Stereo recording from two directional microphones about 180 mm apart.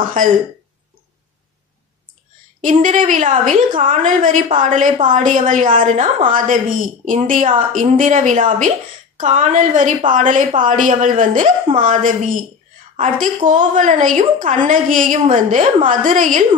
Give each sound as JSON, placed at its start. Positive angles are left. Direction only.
{"t": 0.2, "sound": "a woman's voice", "side_deg": -45}
{"t": 2.6, "sound": "a woman's voice", "side_deg": -45}